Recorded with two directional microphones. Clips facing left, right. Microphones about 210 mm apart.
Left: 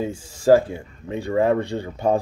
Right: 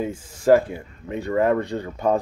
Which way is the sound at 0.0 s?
30° left (ahead or behind).